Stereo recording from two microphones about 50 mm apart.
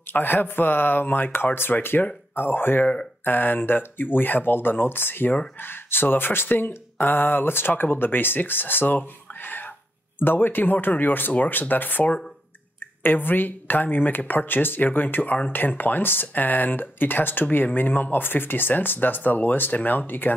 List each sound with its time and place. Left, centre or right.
0.1 s speech: left